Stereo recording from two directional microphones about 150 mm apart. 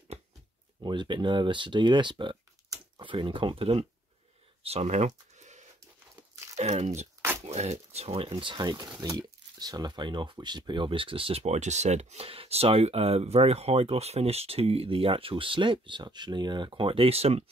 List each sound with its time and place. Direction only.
0.8 s speech: 30° right (ahead or behind); by 7.1 s 50° right (ahead or behind)
7.2 s a sound: 20° right (ahead or behind)
7.4 s speech: 50° right (ahead or behind)
8.3 s speech: 30° right (ahead or behind)